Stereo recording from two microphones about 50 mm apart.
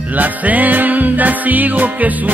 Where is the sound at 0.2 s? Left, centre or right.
Right.